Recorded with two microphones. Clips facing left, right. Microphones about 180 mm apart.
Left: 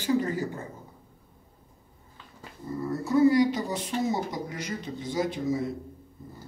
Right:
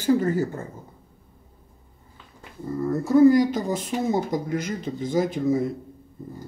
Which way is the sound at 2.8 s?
45° right (ahead or behind).